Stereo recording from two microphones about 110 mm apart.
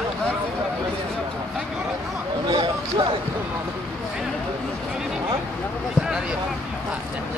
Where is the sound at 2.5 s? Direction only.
50° right (ahead or behind).